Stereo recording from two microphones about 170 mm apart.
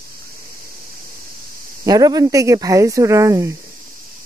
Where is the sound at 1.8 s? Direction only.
20° right (ahead or behind).